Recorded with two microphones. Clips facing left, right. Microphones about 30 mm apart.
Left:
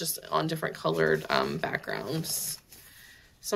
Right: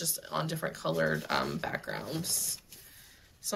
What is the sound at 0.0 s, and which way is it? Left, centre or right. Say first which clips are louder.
Speech: left 5 dB; left.